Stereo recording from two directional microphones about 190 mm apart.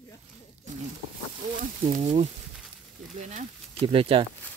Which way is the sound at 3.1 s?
40° right (ahead or behind).